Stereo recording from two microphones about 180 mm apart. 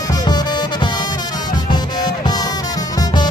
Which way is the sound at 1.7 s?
25° left (ahead or behind).